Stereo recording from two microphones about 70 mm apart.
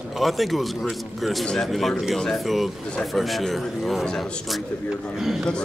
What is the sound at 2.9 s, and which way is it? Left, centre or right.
A man's voice, centre.